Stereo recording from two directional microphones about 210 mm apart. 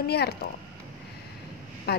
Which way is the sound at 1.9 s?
50° left (ahead or behind).